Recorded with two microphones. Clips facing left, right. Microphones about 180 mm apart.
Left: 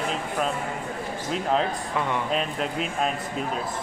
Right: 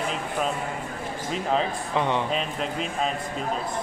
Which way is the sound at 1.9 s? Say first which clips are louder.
Right 2 dB; 25° right (ahead or behind).